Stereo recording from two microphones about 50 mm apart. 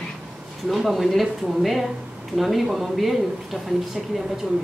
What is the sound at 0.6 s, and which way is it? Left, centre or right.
Speech, centre.